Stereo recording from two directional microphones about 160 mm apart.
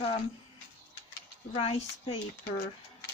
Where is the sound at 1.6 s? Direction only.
35° left (ahead or behind).